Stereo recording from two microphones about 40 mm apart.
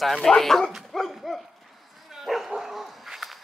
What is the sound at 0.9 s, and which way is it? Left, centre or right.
Dog, centre.